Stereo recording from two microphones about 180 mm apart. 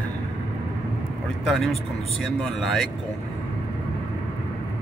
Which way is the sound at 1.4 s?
Centre (ahead or behind).